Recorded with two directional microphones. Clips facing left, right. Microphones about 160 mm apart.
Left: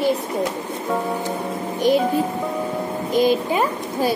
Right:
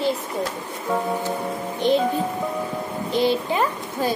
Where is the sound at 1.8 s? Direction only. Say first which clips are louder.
Left 2 dB; 10° left (ahead or behind).